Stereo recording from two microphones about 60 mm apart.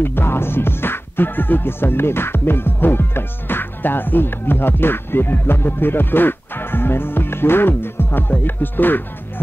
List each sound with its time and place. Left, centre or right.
0.0 s music: left